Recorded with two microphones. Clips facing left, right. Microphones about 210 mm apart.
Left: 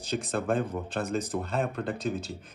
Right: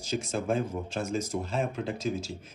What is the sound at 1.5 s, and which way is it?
Speech, centre (ahead or behind).